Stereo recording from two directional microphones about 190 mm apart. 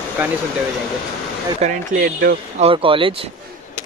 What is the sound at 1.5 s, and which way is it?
Speech, 45° right (ahead or behind).